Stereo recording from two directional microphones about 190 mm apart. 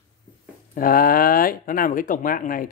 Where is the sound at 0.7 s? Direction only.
50° left (ahead or behind).